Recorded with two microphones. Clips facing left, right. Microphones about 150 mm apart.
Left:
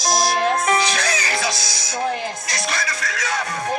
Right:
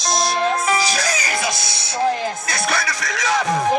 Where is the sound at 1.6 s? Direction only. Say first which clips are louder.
Right 1 dB; 60° right (ahead or behind).